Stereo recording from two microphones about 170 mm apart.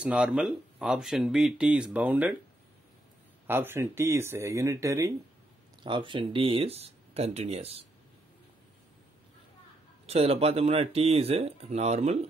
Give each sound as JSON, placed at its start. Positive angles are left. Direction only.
{"t": 0.0, "sound": "speech", "side_deg": -5}
{"t": 3.4, "sound": "speech", "side_deg": -15}
{"t": 5.9, "sound": "speech", "side_deg": -30}
{"t": 10.0, "sound": "speech", "side_deg": -35}